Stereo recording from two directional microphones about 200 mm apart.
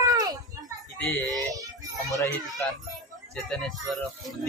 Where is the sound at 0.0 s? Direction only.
20° right (ahead or behind).